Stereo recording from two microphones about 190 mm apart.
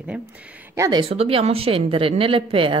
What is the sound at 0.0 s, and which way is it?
Speech, 5° right (ahead or behind).